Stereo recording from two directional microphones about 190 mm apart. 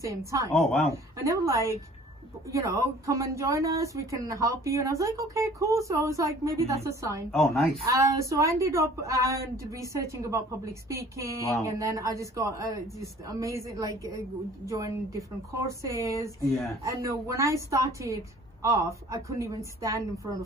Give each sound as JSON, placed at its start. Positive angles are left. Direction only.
{"t": 0.0, "sound": "speech", "side_deg": -15}
{"t": 0.6, "sound": "speech", "side_deg": 5}
{"t": 1.2, "sound": "speech", "side_deg": -15}
{"t": 7.2, "sound": "speech", "side_deg": 0}
{"t": 7.8, "sound": "speech", "side_deg": -15}